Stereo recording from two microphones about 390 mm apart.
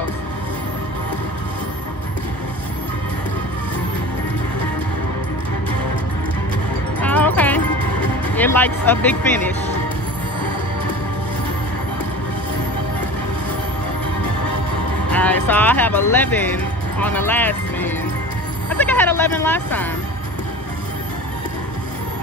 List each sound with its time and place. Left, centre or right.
7.0 s music: centre
8.4 s speech: centre
15.0 s speech: centre